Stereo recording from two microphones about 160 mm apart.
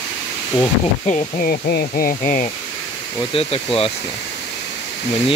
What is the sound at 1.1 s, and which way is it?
Speech, 50° left (ahead or behind).